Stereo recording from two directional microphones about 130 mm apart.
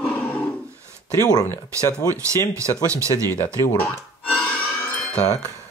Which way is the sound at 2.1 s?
25° right (ahead or behind).